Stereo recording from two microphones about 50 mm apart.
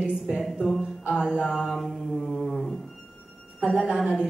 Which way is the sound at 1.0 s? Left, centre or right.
Centre.